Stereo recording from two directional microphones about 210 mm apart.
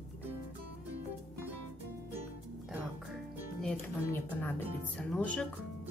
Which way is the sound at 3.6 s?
10° left (ahead or behind).